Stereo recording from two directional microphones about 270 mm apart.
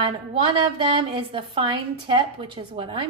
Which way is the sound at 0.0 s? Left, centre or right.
Centre.